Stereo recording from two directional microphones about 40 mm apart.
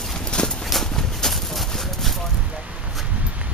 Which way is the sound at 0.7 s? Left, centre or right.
Centre.